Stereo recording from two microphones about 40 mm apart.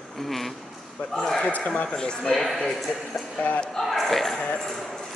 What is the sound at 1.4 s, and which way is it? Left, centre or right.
Speech, left.